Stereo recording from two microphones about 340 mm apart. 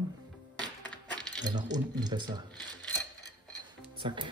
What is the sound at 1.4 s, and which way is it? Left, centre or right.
Speech, centre.